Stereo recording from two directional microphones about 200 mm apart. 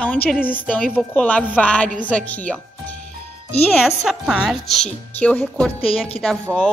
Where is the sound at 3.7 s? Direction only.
Centre (ahead or behind).